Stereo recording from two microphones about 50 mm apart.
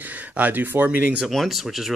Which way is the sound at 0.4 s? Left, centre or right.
Right.